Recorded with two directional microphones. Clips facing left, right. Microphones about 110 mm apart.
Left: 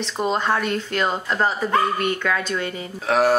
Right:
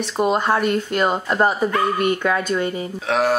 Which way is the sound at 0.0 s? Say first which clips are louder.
Right 3 dB; 10° right (ahead or behind).